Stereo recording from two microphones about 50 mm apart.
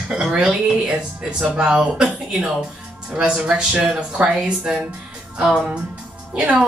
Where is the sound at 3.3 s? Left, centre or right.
Centre.